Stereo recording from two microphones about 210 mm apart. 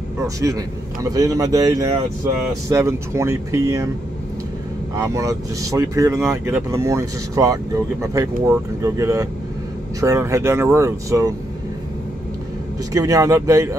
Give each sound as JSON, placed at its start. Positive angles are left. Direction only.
{"t": 0.2, "sound": "speech", "side_deg": -15}
{"t": 4.9, "sound": "speech", "side_deg": -15}
{"t": 12.9, "sound": "speech", "side_deg": -15}